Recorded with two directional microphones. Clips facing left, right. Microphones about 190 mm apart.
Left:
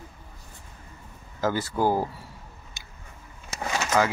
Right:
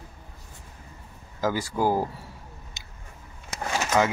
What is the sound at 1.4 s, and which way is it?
Speech, 10° right (ahead or behind).